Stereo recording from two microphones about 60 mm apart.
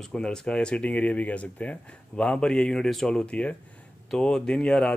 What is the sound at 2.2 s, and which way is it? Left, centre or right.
Speech, centre.